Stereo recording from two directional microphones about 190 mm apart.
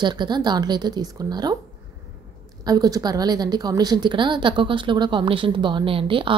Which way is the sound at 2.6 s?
20° right (ahead or behind).